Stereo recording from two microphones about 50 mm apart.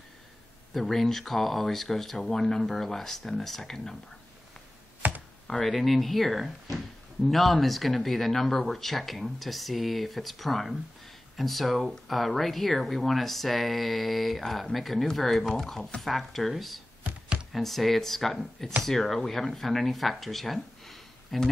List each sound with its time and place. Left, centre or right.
0.7 s speech: centre
5.0 s computer keyboard: right
5.5 s speech: centre